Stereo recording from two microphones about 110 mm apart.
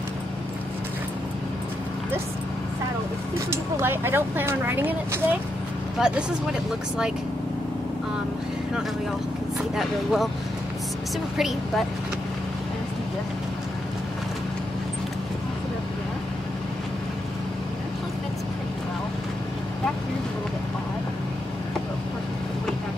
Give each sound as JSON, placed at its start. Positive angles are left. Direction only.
{"t": 3.3, "sound": "speech", "side_deg": -20}
{"t": 5.9, "sound": "speech", "side_deg": -5}
{"t": 9.8, "sound": "speech", "side_deg": 0}
{"t": 11.3, "sound": "speech", "side_deg": 0}